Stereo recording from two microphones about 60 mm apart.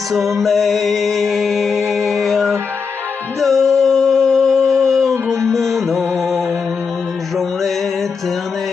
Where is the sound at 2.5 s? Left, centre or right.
Right.